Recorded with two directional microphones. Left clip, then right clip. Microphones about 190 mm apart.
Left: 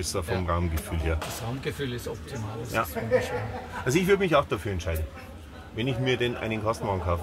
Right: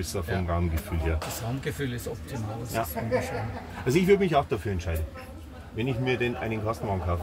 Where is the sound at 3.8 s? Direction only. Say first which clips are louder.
Right 1 dB; 25° left (ahead or behind).